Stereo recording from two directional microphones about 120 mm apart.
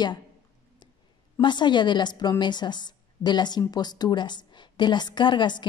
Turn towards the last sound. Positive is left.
turn(degrees=40)  # may be behind; listen again after turning